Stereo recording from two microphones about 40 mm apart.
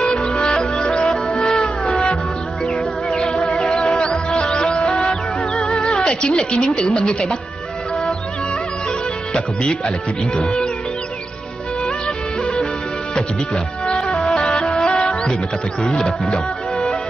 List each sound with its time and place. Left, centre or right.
0.0 s music: left
0.3 s music: centre
0.6 s music: centre
1.0 s music: centre
3.1 s music: centre
3.6 s music: centre
4.0 s music: left
7.0 s speech: left
9.3 s speech: left
14.1 s music: centre
16.3 s music: left